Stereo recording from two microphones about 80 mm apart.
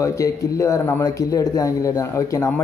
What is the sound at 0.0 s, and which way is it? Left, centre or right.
A man's voice, left.